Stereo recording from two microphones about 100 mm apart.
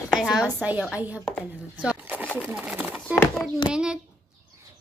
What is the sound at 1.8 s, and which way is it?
Pigeon, 15° right (ahead or behind).